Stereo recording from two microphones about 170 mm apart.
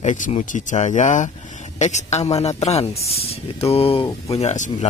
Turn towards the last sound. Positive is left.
turn(degrees=40)  # may be behind; listen again after turning